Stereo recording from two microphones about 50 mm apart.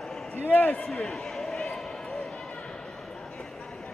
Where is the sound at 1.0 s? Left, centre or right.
Centre.